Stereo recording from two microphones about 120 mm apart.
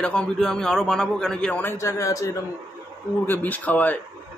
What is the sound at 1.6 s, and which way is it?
Speech, 20° left (ahead or behind).